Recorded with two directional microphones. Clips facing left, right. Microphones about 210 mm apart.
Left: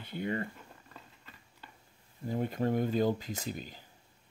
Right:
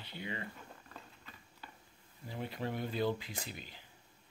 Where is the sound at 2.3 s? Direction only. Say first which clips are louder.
Left 9 dB; 45° left (ahead or behind).